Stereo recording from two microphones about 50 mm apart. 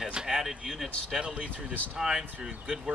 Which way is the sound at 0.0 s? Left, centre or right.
Centre.